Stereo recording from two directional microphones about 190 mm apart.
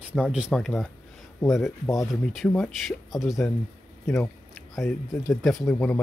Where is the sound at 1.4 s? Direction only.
15° left (ahead or behind).